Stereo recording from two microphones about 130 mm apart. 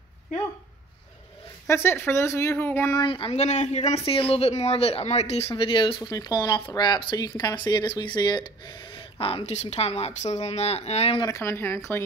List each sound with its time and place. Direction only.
1.7 s speech: 20° left (ahead or behind)
3.0 s speech: 40° left (ahead or behind)
3.3 s speech: 60° left (ahead or behind)
3.9 s speech: 45° left (ahead or behind)
5.6 s speech: 40° left (ahead or behind)
11.1 s speech: 25° left (ahead or behind)